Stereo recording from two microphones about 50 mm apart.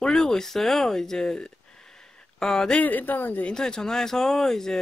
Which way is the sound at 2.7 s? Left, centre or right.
Left.